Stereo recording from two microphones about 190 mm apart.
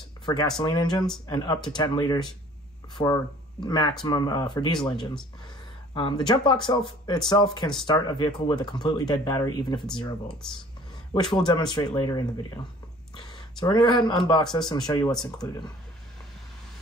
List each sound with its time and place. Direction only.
0.2 s speech: 20° left (ahead or behind)
3.6 s speech: 20° left (ahead or behind)
10.4 s speech: 5° left (ahead or behind)
11.1 s speech: 20° left (ahead or behind)